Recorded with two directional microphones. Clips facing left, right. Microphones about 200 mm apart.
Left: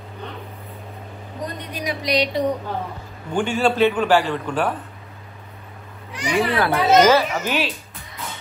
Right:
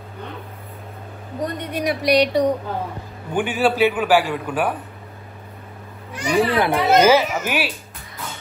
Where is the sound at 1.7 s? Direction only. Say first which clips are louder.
Right 5 dB; 60° right (ahead or behind).